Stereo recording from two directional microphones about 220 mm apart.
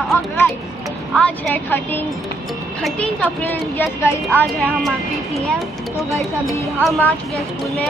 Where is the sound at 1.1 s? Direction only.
5° left (ahead or behind).